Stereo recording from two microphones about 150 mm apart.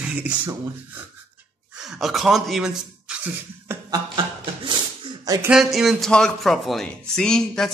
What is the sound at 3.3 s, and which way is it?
Speech, 20° right (ahead or behind).